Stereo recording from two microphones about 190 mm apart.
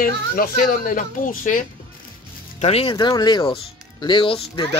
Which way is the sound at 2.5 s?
30° left (ahead or behind).